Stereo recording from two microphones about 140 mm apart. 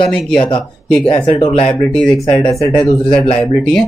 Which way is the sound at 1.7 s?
10° left (ahead or behind).